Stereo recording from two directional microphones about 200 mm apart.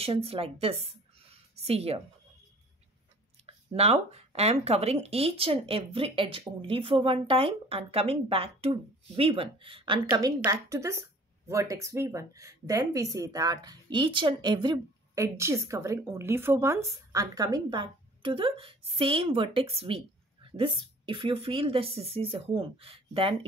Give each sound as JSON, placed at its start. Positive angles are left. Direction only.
{"t": 0.0, "sound": "a woman's voice", "side_deg": -30}
{"t": 3.4, "sound": "speech", "side_deg": -30}